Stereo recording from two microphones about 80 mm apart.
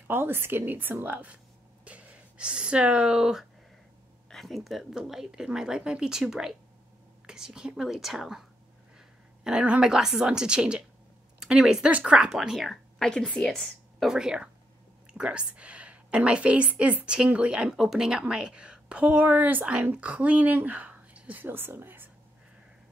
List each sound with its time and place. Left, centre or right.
0.1 s a woman's voice: right; by 3.4 s centre
4.3 s a woman's voice: centre
13.1 s a woman's voice: centre
14.0 s a woman's voice: centre; by 22.1 s right